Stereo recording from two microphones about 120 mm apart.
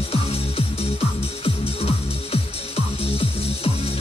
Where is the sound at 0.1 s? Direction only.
55° left (ahead or behind).